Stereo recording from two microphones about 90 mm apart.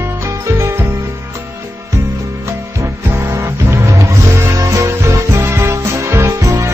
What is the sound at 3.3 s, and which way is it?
Music, 30° right (ahead or behind).